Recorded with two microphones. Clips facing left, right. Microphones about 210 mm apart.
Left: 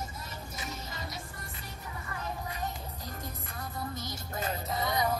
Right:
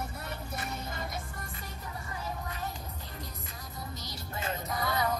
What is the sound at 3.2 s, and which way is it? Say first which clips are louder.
Music: left 3 dB; 55° left (ahead or behind).